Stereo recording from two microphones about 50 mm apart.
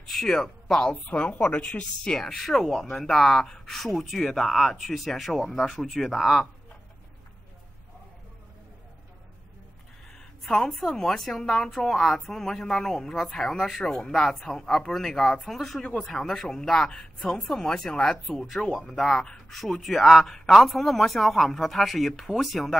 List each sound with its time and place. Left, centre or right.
0.1 s speech: centre
1.0 s a woman's voice: left
2.1 s speech: centre
10.1 s a sound: centre
10.6 s speech: centre
19.0 s speech: centre